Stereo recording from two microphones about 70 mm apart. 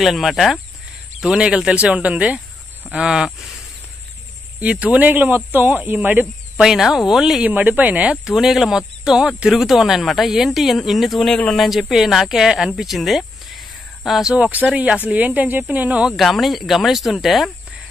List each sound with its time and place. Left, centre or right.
0.0 s speech: centre
1.2 s speech: centre
4.6 s speech: centre
6.5 s speech: centre
7.4 s speech: right
8.3 s speech: centre
14.3 s speech: right
16.1 s speech: centre